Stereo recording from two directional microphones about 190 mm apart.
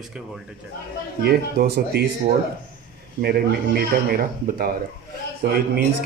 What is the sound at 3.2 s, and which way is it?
A man's voice, 55° right (ahead or behind).